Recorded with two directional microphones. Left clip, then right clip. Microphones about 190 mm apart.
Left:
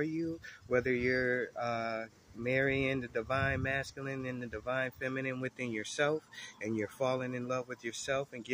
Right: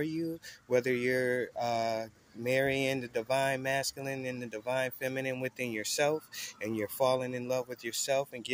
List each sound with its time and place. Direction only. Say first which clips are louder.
0.7 s speech: right 2 dB; centre (ahead or behind)